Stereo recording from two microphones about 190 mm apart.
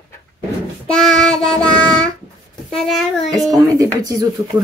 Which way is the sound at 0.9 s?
5° left (ahead or behind).